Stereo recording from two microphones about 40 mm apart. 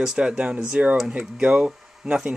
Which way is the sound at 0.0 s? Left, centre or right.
Centre.